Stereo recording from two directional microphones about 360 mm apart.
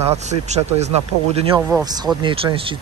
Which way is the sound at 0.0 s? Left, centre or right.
Centre.